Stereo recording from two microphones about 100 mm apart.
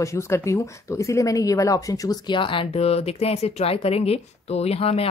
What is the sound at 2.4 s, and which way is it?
Speech, 60° left (ahead or behind).